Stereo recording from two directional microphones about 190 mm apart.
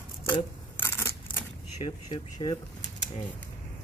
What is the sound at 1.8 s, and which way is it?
Speech, 25° left (ahead or behind).